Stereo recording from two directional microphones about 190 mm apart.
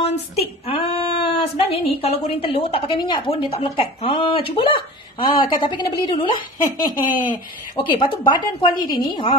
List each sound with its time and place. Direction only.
0.1 s speech: 30° left (ahead or behind)
6.9 s speech: 45° left (ahead or behind)
7.7 s speech: 25° left (ahead or behind)